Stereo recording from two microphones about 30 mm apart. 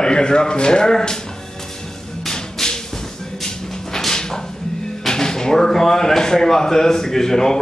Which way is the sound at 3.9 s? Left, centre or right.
Centre.